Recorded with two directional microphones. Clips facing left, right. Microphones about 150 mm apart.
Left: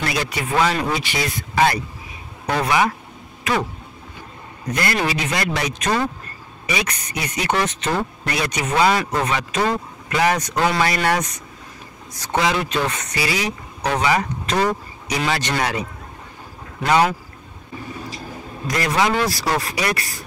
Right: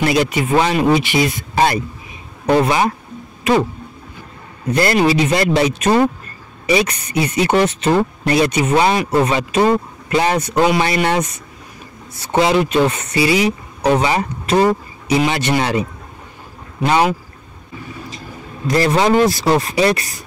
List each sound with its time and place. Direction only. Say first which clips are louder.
0.0 s speech: right 8 dB; 25° right (ahead or behind)
1.5 s speech: left 2 dB; 30° right (ahead or behind)
4.6 s speech: right 8 dB; 30° right (ahead or behind)
12.4 s speech: right 7 dB; 25° right (ahead or behind)
16.8 s speech: right 2 dB; 25° right (ahead or behind)
18.7 s speech: right 6 dB; 30° right (ahead or behind)